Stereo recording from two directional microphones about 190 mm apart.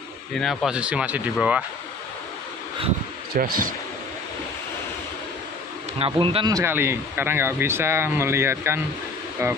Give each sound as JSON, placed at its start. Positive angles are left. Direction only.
{"t": 0.4, "sound": "speech", "side_deg": 0}
{"t": 3.3, "sound": "speech", "side_deg": -50}
{"t": 5.9, "sound": "a man's voice", "side_deg": -25}